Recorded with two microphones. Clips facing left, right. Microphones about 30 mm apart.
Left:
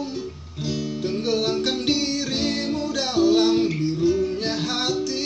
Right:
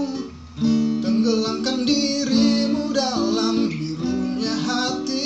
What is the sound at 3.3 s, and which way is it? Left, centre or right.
Music, left.